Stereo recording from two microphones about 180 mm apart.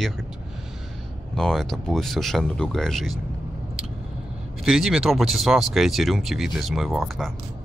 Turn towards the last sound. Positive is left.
turn(degrees=0)  # may be behind; listen again after turning